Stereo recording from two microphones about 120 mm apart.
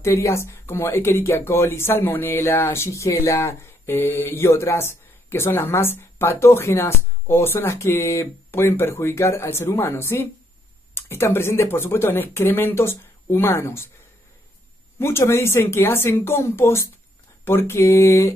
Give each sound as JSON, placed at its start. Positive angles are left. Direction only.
{"t": 0.0, "sound": "speech", "side_deg": 25}
{"t": 15.0, "sound": "speech", "side_deg": 20}